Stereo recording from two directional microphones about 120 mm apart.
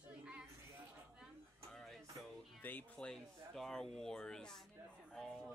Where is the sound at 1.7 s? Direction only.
Centre (ahead or behind).